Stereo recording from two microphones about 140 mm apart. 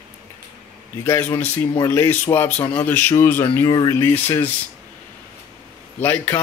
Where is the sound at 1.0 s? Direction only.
15° left (ahead or behind).